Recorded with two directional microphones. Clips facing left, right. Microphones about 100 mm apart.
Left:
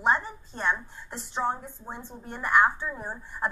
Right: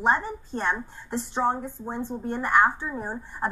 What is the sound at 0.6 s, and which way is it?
A woman's voice, 40° right (ahead or behind).